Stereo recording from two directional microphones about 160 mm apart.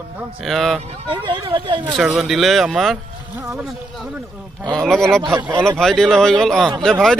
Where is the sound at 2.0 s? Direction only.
Centre (ahead or behind).